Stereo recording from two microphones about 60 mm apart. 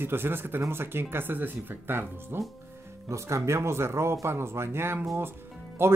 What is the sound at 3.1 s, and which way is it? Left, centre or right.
Speech, right.